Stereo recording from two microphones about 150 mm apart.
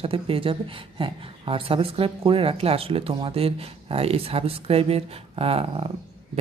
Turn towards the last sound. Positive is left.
turn(degrees=-40)  # may be behind; listen again after turning